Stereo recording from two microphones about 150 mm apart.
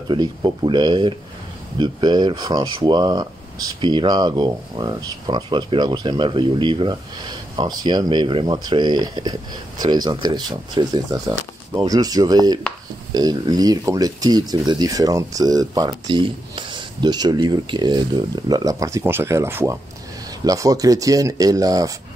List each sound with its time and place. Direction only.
0.1 s speech: 30° right (ahead or behind)